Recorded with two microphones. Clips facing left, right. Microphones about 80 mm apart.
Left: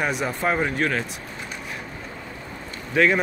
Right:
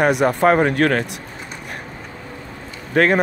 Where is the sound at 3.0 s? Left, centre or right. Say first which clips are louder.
Right 3 dB; right.